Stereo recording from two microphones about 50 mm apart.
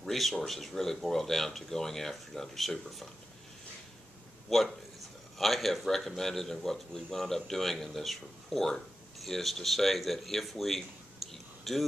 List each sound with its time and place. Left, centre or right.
0.0 s speech: centre
4.5 s speech: centre